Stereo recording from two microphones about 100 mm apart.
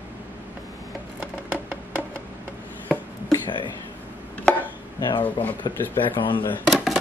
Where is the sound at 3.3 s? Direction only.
50° left (ahead or behind).